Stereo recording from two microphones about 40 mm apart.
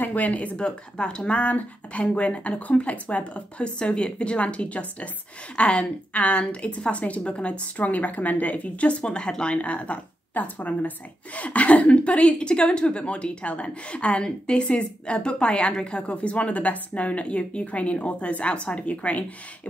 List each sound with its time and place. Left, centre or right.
0.0 s speech: left
9.0 s a woman's voice: left